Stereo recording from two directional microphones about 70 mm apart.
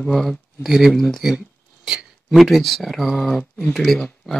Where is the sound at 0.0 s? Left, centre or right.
Centre.